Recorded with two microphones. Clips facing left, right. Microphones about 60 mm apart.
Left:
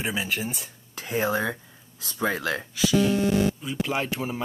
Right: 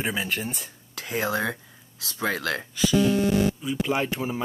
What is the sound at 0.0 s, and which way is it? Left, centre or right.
Speech, centre.